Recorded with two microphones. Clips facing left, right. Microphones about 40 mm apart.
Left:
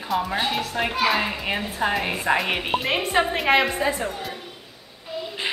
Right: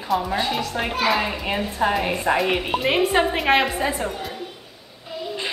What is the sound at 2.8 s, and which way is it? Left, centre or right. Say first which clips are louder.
A woman's voice: right 4 dB; centre.